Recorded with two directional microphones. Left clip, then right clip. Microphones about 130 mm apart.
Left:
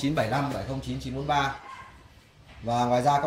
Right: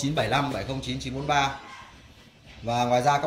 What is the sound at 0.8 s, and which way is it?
Speech, 10° right (ahead or behind).